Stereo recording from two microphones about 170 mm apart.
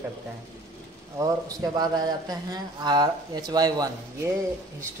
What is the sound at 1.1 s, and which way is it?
A man's voice, 20° right (ahead or behind).